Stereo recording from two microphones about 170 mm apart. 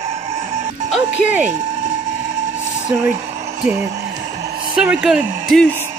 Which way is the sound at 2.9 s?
10° right (ahead or behind).